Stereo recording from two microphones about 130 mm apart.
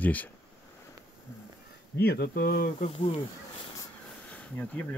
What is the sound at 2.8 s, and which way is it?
Speech, 45° left (ahead or behind).